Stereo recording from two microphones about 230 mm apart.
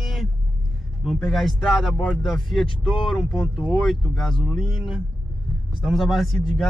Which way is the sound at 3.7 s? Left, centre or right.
Centre.